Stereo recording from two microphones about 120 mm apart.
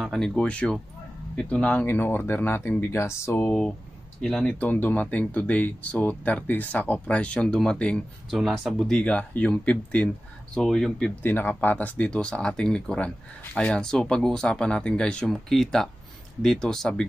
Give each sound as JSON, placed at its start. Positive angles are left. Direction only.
{"t": 0.0, "sound": "speech", "side_deg": 5}
{"t": 11.2, "sound": "speech", "side_deg": 15}